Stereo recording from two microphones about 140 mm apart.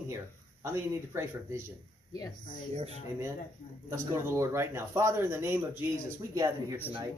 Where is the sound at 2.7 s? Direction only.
50° right (ahead or behind).